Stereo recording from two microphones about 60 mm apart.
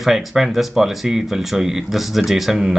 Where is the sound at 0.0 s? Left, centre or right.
Centre.